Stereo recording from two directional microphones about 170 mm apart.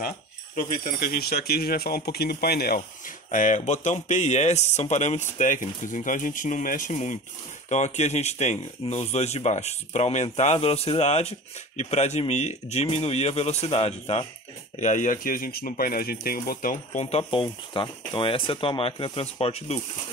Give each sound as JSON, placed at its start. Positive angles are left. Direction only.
{"t": 0.6, "sound": "speech", "side_deg": 55}
{"t": 17.0, "sound": "speech", "side_deg": 35}